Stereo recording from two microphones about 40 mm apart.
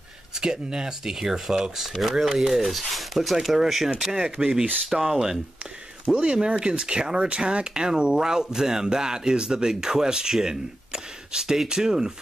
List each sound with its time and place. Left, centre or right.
0.3 s speech: centre
1.9 s speech: centre
4.1 s speech: centre
6.2 s speech: right